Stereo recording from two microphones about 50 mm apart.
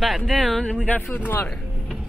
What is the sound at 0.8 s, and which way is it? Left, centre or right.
Speech, left.